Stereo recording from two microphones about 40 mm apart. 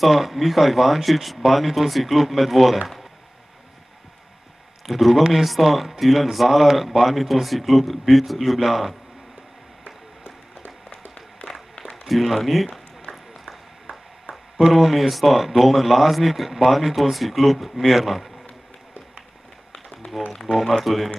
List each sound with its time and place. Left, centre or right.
0.0 s speech: centre
4.8 s speech: centre
12.0 s speech: centre
14.3 s speech: centre
19.7 s a sound: centre
20.5 s speech: centre